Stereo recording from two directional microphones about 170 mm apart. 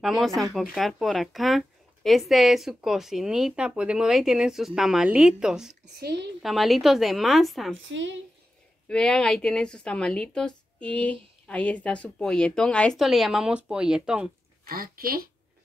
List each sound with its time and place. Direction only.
0.0 s speech: centre (ahead or behind)
5.9 s a woman's voice: 80° right
6.4 s speech: centre (ahead or behind)
7.9 s speech: 90° right
8.8 s speech: 5° left (ahead or behind)
14.6 s speech: 60° right (ahead or behind)